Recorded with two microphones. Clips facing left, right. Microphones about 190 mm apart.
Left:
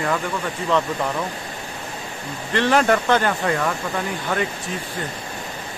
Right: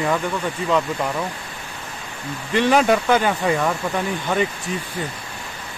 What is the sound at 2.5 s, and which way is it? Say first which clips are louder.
Speech: right 1 dB; 15° right (ahead or behind).